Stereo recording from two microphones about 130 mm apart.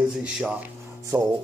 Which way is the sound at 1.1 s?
25° right (ahead or behind).